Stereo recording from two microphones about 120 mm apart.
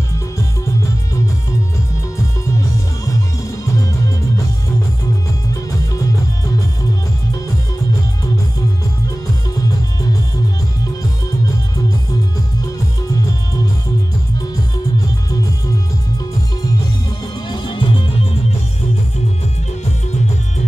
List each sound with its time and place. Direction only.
2.4 s music: 25° left (ahead or behind)
5.5 s music: 30° left (ahead or behind)
17.5 s music: 40° left (ahead or behind)